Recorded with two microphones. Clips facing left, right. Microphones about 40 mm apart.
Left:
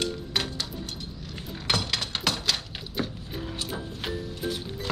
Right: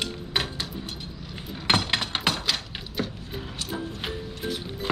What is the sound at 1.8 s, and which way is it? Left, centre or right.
Music, right.